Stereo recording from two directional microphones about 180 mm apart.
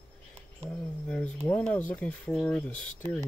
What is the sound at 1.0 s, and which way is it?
Speech, 5° left (ahead or behind).